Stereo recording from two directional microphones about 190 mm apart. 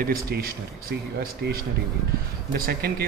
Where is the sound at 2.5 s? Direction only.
55° right (ahead or behind).